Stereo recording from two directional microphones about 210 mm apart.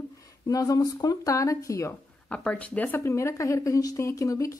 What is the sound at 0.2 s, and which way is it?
A woman's voice, 15° left (ahead or behind).